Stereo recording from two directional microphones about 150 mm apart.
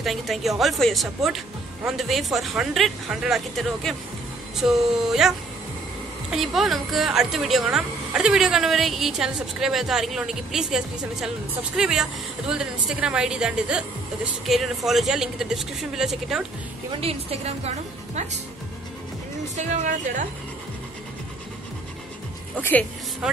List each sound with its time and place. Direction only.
0.0 s speech: centre (ahead or behind)
6.3 s speech: centre (ahead or behind)
17.0 s a woman's voice: 40° right (ahead or behind)
19.5 s a woman's voice: 50° right (ahead or behind)
22.6 s speech: 10° left (ahead or behind)
23.2 s speech: 5° right (ahead or behind)